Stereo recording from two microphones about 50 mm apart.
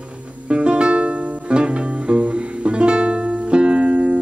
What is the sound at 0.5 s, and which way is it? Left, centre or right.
Music, centre.